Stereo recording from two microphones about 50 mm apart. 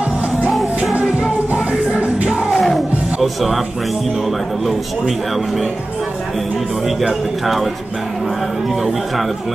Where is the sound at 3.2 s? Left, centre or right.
Centre.